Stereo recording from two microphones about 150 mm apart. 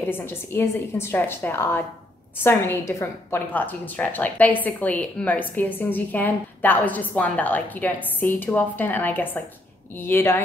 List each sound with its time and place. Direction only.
0.1 s a woman's voice: 15° left (ahead or behind)